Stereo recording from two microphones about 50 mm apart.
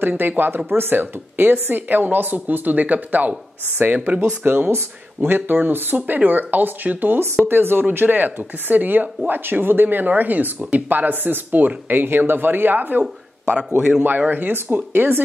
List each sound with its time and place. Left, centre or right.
0.2 s speech: right
4.5 s speech: right
7.4 s speech: right
13.0 s speech: centre
14.0 s speech: right